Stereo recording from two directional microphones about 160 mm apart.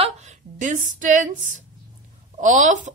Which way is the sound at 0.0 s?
45° right (ahead or behind).